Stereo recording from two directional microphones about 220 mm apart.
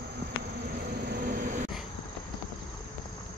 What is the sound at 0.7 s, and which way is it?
Vehicle, 40° right (ahead or behind).